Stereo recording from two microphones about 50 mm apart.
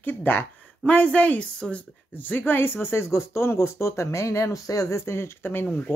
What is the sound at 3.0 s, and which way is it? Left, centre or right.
Speech, left.